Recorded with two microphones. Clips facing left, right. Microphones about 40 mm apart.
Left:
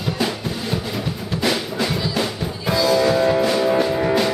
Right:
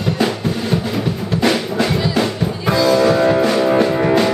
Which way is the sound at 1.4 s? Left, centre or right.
Centre.